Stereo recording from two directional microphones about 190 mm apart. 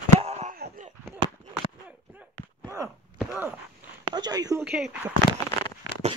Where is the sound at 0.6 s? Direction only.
40° right (ahead or behind).